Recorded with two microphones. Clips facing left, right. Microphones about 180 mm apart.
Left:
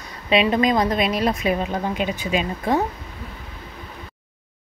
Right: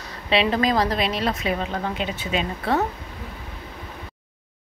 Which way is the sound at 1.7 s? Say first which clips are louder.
Left 3 dB; 15° left (ahead or behind).